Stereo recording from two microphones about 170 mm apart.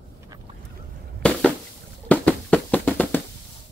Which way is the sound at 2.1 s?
10° left (ahead or behind).